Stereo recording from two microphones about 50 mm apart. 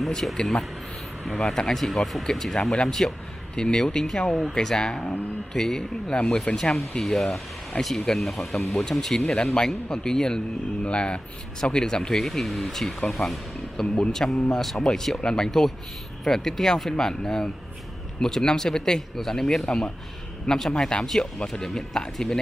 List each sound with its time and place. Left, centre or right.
0.1 s speech: centre
1.9 s speech: centre
7.0 s speech: centre
7.7 s speech: left
8.1 s speech: centre